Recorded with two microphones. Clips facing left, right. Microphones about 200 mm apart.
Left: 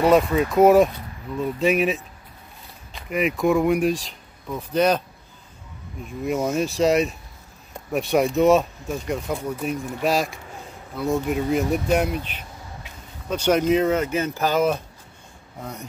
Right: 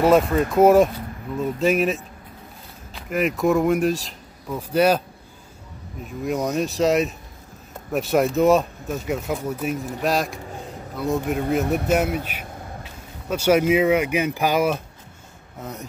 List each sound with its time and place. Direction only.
0.0 s speech: centre (ahead or behind)
6.0 s speech: centre (ahead or behind)
11.6 s speech: 60° right (ahead or behind)
11.9 s speech: 5° right (ahead or behind)
13.3 s speech: 10° right (ahead or behind)